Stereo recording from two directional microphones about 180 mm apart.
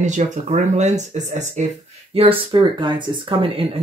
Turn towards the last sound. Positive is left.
turn(degrees=-30)  # may be behind; listen again after turning